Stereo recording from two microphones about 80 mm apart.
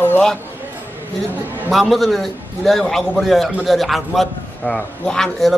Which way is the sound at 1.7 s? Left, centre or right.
Centre.